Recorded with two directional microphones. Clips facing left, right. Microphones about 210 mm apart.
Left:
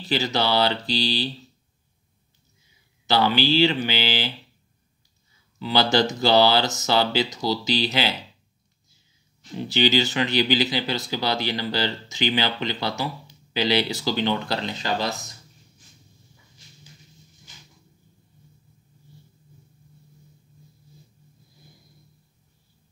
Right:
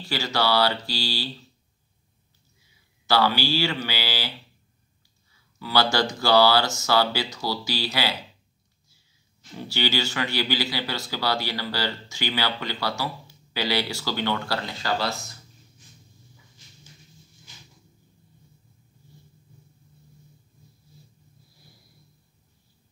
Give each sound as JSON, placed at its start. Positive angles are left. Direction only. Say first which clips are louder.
{"t": 0.0, "sound": "speech", "louder": "left 2 dB", "side_deg": 20}
{"t": 3.1, "sound": "speech", "louder": "left 2 dB", "side_deg": 20}
{"t": 5.6, "sound": "speech", "louder": "left 3 dB", "side_deg": 20}
{"t": 9.6, "sound": "speech", "louder": "left 6 dB", "side_deg": 20}